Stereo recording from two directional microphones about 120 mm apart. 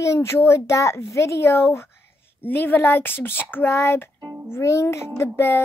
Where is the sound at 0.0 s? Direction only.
25° left (ahead or behind).